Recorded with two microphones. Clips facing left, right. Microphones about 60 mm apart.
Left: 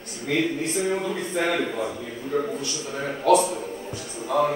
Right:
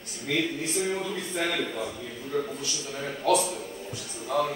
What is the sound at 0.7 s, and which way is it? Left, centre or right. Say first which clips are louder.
Speech: left 4 dB; centre.